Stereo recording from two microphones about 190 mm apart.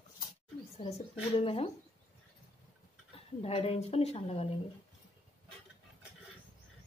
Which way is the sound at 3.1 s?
30° left (ahead or behind).